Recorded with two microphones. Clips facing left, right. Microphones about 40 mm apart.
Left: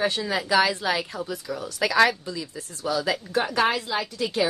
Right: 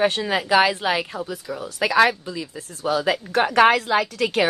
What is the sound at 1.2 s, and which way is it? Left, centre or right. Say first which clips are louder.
Speech: right 1 dB; centre.